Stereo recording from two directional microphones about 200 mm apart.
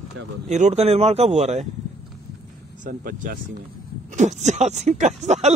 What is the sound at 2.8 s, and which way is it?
A man's voice, 45° right (ahead or behind).